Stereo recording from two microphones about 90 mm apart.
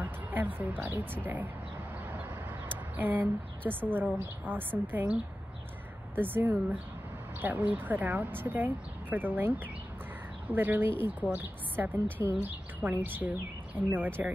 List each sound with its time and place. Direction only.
0.0 s a woman's voice: 20° right (ahead or behind)
3.0 s a woman's voice: 20° right (ahead or behind)
10.5 s a woman's voice: 20° right (ahead or behind)